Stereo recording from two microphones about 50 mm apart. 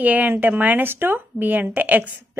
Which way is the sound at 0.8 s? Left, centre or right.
Right.